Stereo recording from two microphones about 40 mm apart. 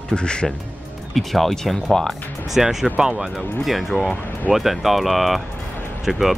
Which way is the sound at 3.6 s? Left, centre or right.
Centre.